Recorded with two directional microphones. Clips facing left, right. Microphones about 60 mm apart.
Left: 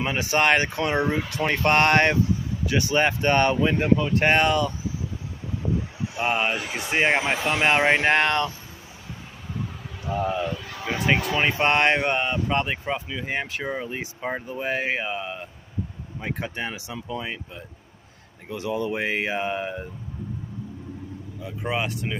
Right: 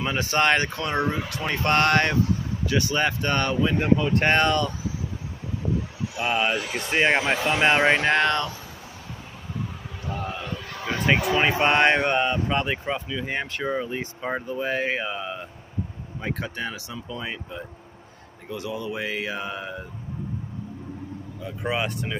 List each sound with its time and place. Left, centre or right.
0.0 s speech: centre
3.8 s speech: centre
6.1 s speech: left
6.5 s speech: centre
8.0 s speech: centre
10.0 s speech: centre
11.1 s mantra: centre
12.4 s speech: centre; by 17.2 s left
17.2 s mantra: centre
18.5 s speech: left
21.5 s mantra: centre